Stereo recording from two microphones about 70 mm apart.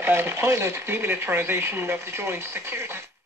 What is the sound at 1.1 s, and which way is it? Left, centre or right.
Speech, right.